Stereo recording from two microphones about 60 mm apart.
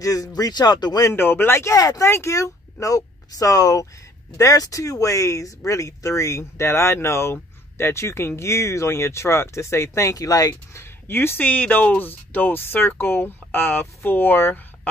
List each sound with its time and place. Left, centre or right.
0.0 s speech: left
1.1 s speech: left
1.8 s speech: left
2.0 s speech: left
2.3 s speech: left
10.1 s speech: left
10.5 s speech: left